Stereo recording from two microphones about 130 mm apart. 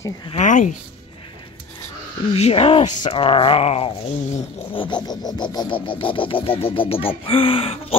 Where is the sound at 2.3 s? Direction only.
50° left (ahead or behind).